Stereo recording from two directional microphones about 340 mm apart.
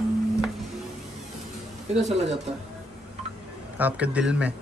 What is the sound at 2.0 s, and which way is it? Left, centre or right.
Speech, centre.